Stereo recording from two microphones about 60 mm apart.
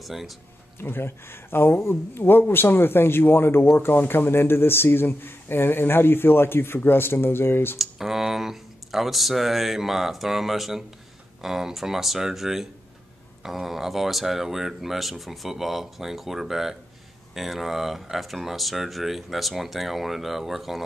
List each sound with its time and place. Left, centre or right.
0.0 s speech: centre
0.7 s speech: left
7.8 s speech: centre